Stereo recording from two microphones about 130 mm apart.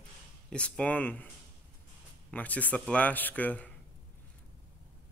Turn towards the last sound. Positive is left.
turn(degrees=10)  # may be behind; listen again after turning